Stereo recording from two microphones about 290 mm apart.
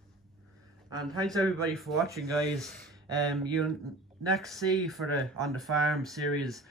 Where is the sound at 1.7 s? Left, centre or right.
Centre.